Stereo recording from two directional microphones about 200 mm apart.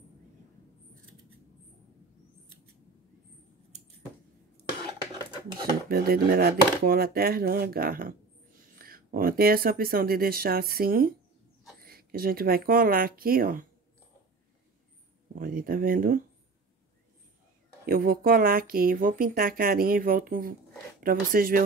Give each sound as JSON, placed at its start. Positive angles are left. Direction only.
{"t": 5.9, "sound": "speech", "side_deg": -50}
{"t": 15.3, "sound": "speech", "side_deg": -45}
{"t": 17.8, "sound": "speech", "side_deg": -45}